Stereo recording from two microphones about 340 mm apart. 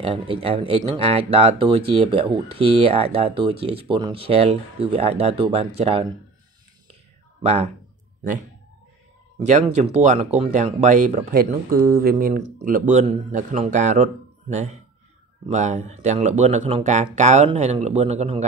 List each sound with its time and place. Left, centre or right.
0.0 s speech: centre
7.4 s speech: centre